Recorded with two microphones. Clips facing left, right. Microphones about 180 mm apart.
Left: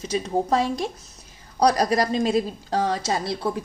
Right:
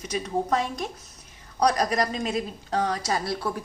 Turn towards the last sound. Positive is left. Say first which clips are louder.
# left 2 dB
turn(degrees=25)  # may be behind; listen again after turning